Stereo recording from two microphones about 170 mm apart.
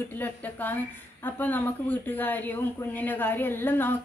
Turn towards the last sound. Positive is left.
turn(degrees=10)  # may be behind; listen again after turning